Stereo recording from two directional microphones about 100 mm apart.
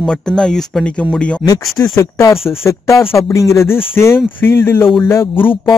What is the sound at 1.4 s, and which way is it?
Speech, 40° left (ahead or behind).